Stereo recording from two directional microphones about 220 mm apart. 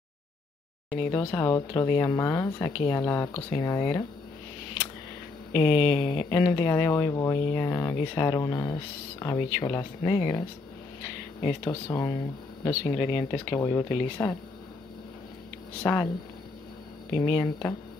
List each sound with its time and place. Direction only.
1.1 s speech: 15° left (ahead or behind)
5.5 s speech: 25° left (ahead or behind)
11.4 s speech: 15° left (ahead or behind)
15.8 s speech: 10° left (ahead or behind)
17.1 s speech: 20° left (ahead or behind)